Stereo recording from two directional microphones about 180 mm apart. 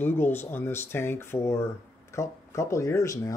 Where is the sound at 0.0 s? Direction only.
10° left (ahead or behind).